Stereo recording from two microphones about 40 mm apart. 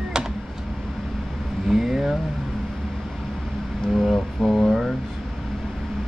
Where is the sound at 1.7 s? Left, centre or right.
Centre.